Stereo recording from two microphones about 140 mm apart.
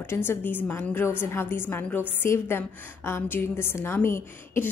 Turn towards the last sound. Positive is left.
turn(degrees=15)  # may be behind; listen again after turning